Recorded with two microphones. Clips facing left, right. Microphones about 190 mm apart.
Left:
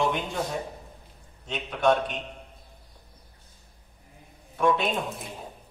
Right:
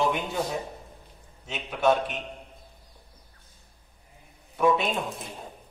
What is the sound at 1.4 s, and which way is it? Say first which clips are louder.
Speech: even; 5° right (ahead or behind).